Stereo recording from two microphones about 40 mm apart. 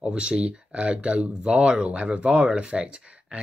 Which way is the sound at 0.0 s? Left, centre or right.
Right.